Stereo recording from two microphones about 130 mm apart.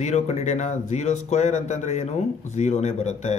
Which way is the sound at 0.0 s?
60° left (ahead or behind).